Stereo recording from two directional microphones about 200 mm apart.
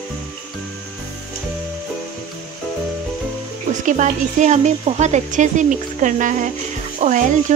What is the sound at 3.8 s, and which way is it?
Speech, 40° right (ahead or behind).